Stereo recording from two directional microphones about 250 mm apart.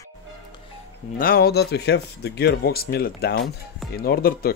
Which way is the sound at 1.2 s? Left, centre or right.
Left.